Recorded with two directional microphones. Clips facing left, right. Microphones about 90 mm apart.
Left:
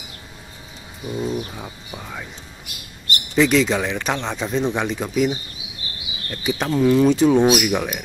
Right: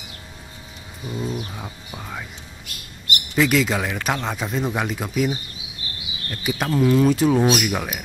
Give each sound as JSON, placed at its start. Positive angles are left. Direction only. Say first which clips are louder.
{"t": 1.1, "sound": "a man's voice", "louder": "left 3 dB", "side_deg": 0}
{"t": 2.7, "sound": "speech", "louder": "right 1 dB", "side_deg": 15}
{"t": 3.3, "sound": "a man's voice", "louder": "left 3 dB", "side_deg": -5}
{"t": 5.6, "sound": "bird", "louder": "left 1 dB", "side_deg": 15}
{"t": 6.3, "sound": "a man's voice", "louder": "left 1 dB", "side_deg": 0}
{"t": 7.4, "sound": "speech", "louder": "left 3 dB", "side_deg": 5}
{"t": 7.7, "sound": "a man's voice", "louder": "left 4 dB", "side_deg": -5}